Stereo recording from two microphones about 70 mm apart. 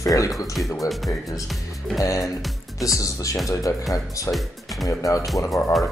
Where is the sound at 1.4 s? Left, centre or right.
Centre.